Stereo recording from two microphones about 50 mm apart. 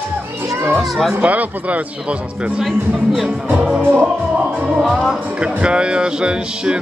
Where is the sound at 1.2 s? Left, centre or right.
Right.